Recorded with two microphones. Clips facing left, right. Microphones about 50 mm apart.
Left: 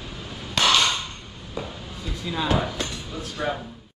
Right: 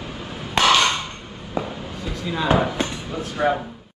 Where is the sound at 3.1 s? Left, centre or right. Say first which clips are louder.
Right 7 dB; right.